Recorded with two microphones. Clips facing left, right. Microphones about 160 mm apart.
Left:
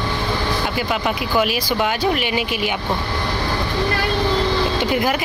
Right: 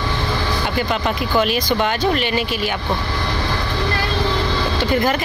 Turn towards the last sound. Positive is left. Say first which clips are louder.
# right 1 dB
turn(degrees=10)  # may be behind; listen again after turning